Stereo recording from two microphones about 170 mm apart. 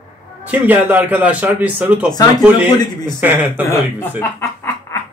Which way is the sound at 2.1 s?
20° left (ahead or behind).